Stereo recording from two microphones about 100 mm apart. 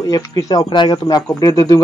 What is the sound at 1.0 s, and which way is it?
Speech, 35° left (ahead or behind).